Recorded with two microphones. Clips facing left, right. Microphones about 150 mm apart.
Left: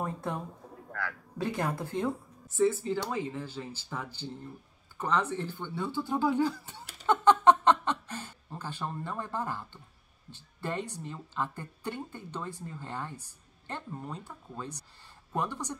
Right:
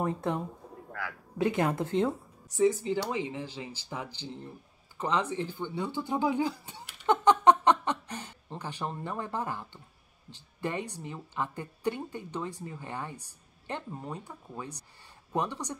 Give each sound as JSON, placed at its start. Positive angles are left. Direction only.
{"t": 0.0, "sound": "speech", "side_deg": -20}